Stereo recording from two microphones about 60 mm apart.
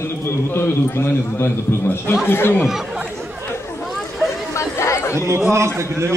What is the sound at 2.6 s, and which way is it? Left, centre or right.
Speech, centre.